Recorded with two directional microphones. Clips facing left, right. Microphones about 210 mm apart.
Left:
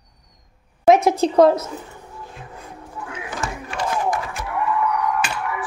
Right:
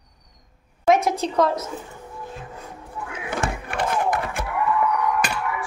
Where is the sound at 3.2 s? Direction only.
55° right (ahead or behind).